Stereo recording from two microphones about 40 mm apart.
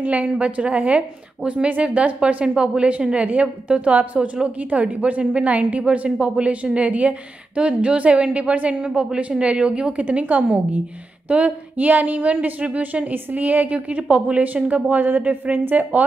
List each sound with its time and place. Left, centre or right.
0.0 s speech: right
5.9 s speech: right
10.0 s speech: right
13.1 s a woman's voice: right
15.2 s a woman's voice: right